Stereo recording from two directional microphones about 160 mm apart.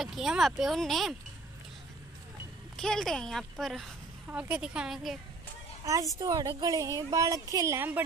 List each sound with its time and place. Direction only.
0.0 s speech: centre (ahead or behind)
2.8 s speech: centre (ahead or behind)
5.9 s a woman's voice: 20° right (ahead or behind)